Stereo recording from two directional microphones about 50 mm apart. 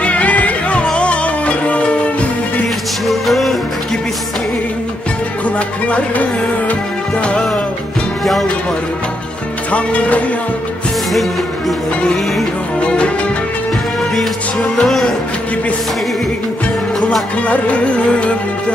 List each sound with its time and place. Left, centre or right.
0.0 s music: left
3.1 s music: centre
5.9 s music: left
8.2 s speech: centre
9.7 s music: left
12.8 s music: left
14.8 s speech: centre
17.5 s music: left